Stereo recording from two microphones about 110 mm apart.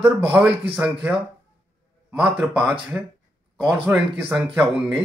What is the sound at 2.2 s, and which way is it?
Speech, 5° right (ahead or behind).